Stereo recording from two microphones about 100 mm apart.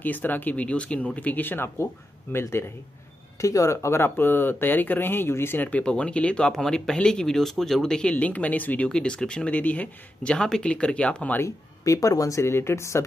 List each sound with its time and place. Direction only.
0.0 s speech: 15° left (ahead or behind)
11.4 s speech: 30° left (ahead or behind)